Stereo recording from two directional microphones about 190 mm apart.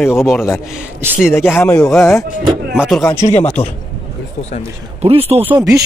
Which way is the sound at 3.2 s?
35° left (ahead or behind).